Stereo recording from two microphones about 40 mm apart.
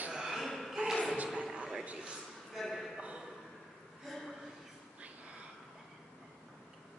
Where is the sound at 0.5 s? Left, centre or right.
Centre.